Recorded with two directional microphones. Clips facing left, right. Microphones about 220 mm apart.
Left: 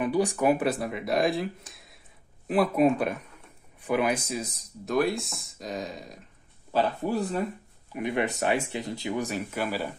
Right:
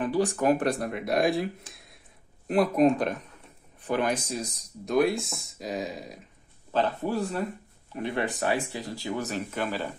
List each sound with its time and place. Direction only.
0.0 s speech: 10° left (ahead or behind)
1.7 s a sound: centre (ahead or behind)
2.4 s speech: centre (ahead or behind)
6.7 s a man's voice: 10° left (ahead or behind)